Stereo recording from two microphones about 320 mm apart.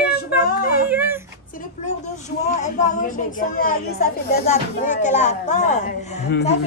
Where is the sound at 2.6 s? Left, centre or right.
Left.